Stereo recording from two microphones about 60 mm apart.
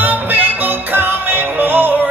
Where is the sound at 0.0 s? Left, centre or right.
Right.